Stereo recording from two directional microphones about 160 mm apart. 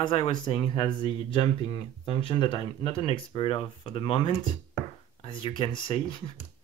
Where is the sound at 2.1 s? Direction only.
30° left (ahead or behind).